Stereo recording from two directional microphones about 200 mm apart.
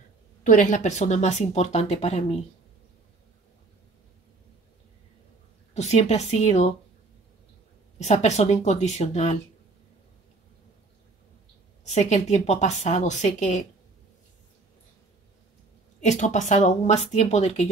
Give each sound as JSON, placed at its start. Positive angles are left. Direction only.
{"t": 0.4, "sound": "speech", "side_deg": 40}
{"t": 5.8, "sound": "speech", "side_deg": 35}
{"t": 8.0, "sound": "speech", "side_deg": 35}
{"t": 11.8, "sound": "speech", "side_deg": 35}
{"t": 16.0, "sound": "speech", "side_deg": 40}